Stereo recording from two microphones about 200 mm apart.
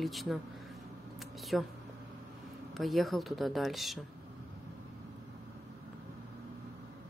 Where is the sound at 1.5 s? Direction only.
Centre (ahead or behind).